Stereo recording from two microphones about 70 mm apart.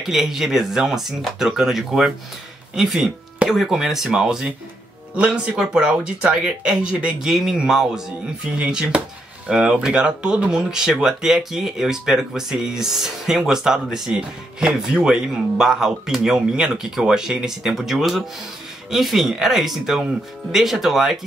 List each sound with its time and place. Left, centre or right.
0.0 s speech: centre
7.2 s speech: centre